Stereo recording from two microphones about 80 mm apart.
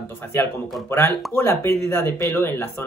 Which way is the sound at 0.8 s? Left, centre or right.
Left.